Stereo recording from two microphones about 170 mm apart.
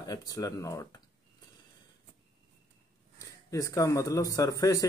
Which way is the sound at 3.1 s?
20° left (ahead or behind).